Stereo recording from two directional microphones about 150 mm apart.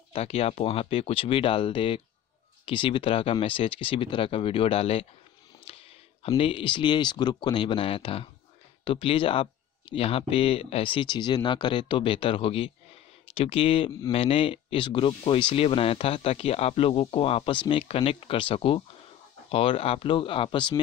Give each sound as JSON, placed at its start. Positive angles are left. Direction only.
{"t": 0.1, "sound": "speech", "side_deg": 40}
{"t": 5.7, "sound": "a sound", "side_deg": 40}
{"t": 6.2, "sound": "speech", "side_deg": 40}